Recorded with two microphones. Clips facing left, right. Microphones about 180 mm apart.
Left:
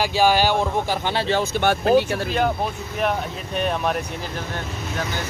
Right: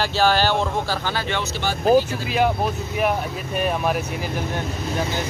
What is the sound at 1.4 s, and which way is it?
Speech, 60° left (ahead or behind).